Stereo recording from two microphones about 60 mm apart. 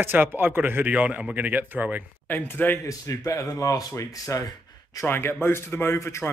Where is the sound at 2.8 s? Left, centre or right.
Left.